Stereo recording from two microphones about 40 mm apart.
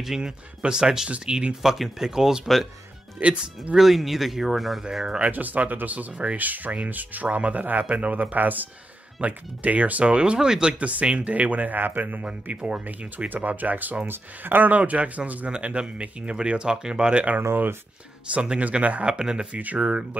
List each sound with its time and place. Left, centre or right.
0.2 s speech: right
1.6 s speech: centre
2.4 s speech: centre
3.2 s speech: right
3.7 s speech: centre
5.2 s speech: right
10.8 s speech: right
13.3 s speech: right
14.0 s speech: right
14.8 s speech: right
19.1 s speech: right
19.5 s speech: right
19.8 s speech: right